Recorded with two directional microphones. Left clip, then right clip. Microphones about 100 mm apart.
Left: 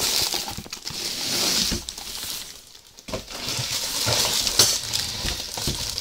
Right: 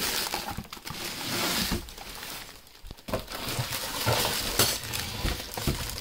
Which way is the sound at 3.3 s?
10° left (ahead or behind).